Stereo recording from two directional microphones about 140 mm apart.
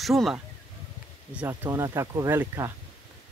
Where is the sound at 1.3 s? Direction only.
10° right (ahead or behind).